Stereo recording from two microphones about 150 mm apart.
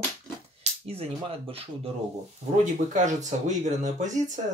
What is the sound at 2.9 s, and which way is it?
Speech, 55° right (ahead or behind).